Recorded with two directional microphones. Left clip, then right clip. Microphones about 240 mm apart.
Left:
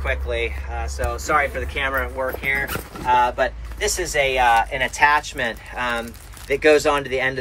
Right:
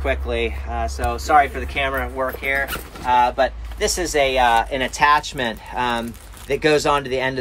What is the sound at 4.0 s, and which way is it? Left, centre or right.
Speech, centre.